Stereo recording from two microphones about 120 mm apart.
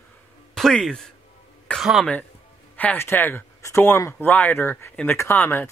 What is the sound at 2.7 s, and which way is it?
Speech, 15° left (ahead or behind).